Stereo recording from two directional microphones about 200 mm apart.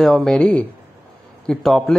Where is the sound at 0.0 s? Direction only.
Centre (ahead or behind).